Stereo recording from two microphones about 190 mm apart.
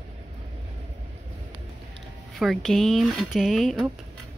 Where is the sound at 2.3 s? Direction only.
Centre (ahead or behind).